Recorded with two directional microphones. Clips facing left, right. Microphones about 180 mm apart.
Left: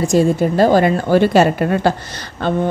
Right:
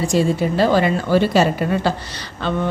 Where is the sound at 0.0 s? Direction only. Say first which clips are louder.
Left 4 dB; 45° left (ahead or behind).